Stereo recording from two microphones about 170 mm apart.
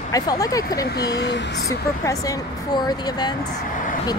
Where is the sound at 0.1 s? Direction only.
20° left (ahead or behind).